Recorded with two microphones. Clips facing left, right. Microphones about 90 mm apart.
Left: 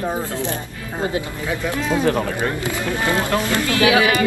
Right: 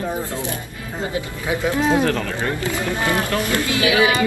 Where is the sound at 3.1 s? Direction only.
20° left (ahead or behind).